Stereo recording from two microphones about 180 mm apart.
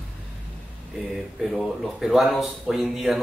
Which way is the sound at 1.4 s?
Centre (ahead or behind).